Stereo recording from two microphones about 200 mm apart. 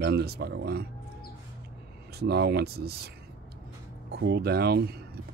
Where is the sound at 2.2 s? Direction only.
55° right (ahead or behind).